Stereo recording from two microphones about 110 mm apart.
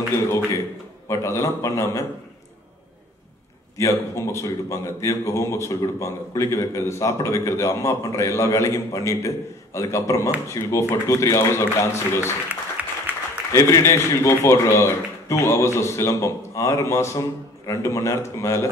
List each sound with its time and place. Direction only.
1.0 s a man's voice: 25° left (ahead or behind)
3.7 s a man's voice: 25° left (ahead or behind)
12.8 s applause: 15° right (ahead or behind)
13.5 s a man's voice: 30° left (ahead or behind)